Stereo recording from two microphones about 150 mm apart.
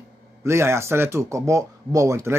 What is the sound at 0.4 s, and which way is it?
Speech, 20° right (ahead or behind).